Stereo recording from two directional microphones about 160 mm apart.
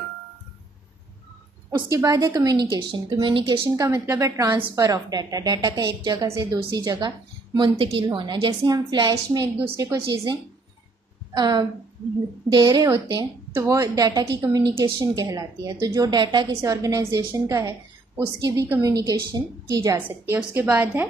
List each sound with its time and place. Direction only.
1.7 s a woman's voice: 20° right (ahead or behind)
3.6 s a woman's voice: 20° right (ahead or behind)
11.3 s a woman's voice: 25° right (ahead or behind)